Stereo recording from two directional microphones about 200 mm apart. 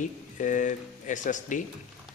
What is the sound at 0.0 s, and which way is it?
Speech, 40° left (ahead or behind).